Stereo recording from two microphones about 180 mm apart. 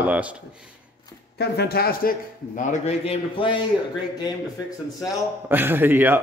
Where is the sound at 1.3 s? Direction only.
60° left (ahead or behind); by 3.5 s 35° left (ahead or behind).